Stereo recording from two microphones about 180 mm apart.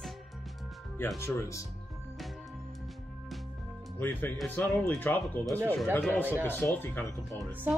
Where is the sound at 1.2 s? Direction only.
15° left (ahead or behind).